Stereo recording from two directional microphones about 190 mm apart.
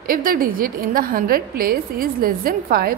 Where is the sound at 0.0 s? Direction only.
50° right (ahead or behind).